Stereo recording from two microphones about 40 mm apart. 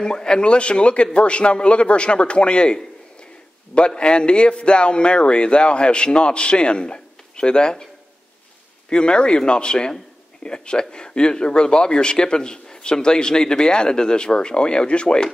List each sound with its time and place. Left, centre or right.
0.0 s a man's voice: left
8.9 s a man's voice: left